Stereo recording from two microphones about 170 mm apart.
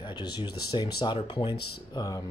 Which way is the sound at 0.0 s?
25° left (ahead or behind).